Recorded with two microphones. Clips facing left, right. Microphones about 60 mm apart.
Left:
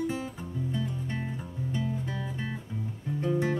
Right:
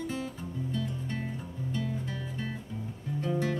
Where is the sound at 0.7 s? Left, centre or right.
Centre.